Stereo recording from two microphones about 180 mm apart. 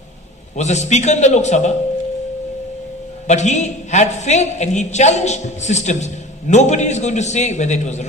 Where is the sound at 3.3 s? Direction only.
40° left (ahead or behind).